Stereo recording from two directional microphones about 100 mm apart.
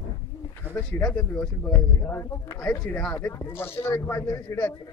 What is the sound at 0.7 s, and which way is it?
Pigeon, 20° right (ahead or behind).